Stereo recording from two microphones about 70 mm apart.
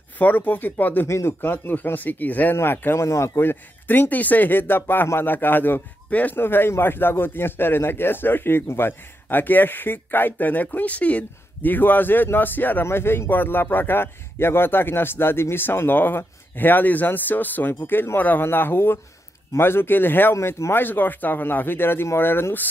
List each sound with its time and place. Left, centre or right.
0.2 s a man's voice: left
1.0 s speech: left
1.4 s a man's voice: left
3.0 s a man's voice: left
20.3 s speech: left
20.7 s speech: left